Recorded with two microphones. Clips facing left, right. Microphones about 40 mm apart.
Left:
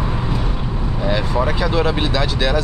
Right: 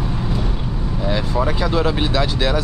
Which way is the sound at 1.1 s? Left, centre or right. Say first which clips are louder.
Left 1 dB; centre.